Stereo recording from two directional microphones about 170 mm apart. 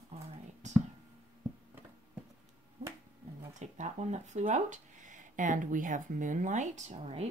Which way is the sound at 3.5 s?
45° right (ahead or behind).